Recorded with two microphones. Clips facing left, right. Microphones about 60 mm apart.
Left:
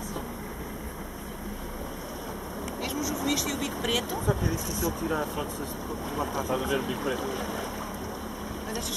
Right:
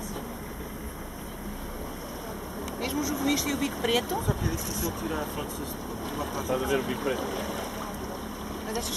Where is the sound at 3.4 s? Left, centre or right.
Right.